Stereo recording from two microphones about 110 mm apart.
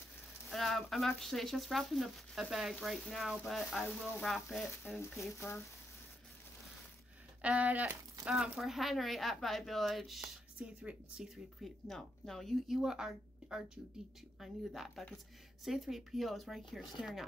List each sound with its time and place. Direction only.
0.5 s speech: centre (ahead or behind)
5.2 s speech: 25° left (ahead or behind)
7.4 s speech: 15° right (ahead or behind)
8.3 s speech: centre (ahead or behind)